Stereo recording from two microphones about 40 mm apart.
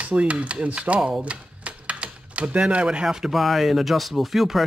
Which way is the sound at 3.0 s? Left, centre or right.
Centre.